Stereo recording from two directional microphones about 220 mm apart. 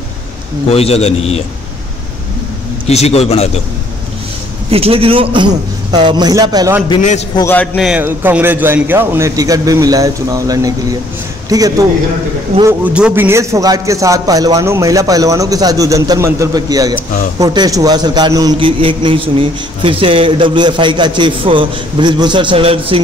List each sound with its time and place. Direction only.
0.7 s a man's voice: 25° left (ahead or behind)
2.9 s a man's voice: 30° left (ahead or behind)
4.6 s a man's voice: 25° right (ahead or behind)
7.3 s a man's voice: 10° left (ahead or behind)
7.7 s a man's voice: 5° right (ahead or behind)
12.8 s a man's voice: 5° right (ahead or behind); by 22.9 s 25° right (ahead or behind)